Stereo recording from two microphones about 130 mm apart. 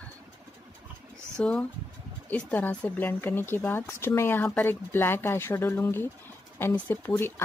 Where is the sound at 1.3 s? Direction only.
10° left (ahead or behind).